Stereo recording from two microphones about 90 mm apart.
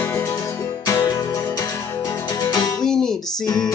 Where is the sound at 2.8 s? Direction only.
5° left (ahead or behind).